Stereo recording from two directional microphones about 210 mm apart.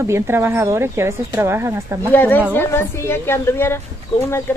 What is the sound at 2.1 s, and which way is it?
A woman's voice, 10° left (ahead or behind).